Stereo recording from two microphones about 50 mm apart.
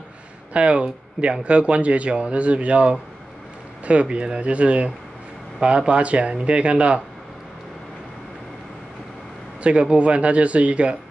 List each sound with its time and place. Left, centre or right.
0.5 s speech: right
9.6 s speech: right